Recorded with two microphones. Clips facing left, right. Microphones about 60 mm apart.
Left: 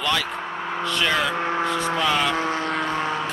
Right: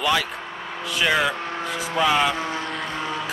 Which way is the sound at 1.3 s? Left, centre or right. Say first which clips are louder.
Left 5 dB; left.